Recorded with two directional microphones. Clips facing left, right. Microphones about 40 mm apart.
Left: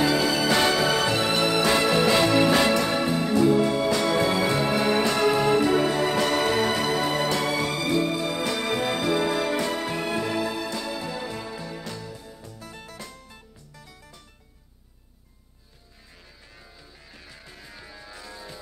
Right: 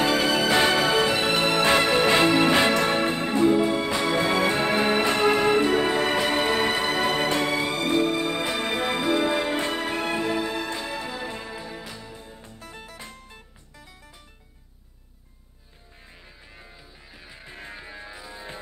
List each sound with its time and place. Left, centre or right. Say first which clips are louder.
0.5 s music: even; centre
1.5 s music: right 2 dB; right
4.3 s music: right 1 dB; right
6.1 s music: even; right
7.0 s music: right 1 dB; right
10.8 s music: even; right
12.0 s music: left 2 dB; right
16.5 s music: right 2 dB; right